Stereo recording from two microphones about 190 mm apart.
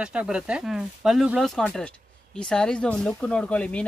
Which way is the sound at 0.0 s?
5° right (ahead or behind).